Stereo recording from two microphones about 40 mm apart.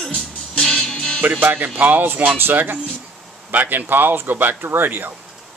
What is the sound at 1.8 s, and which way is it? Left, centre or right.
Speech, right.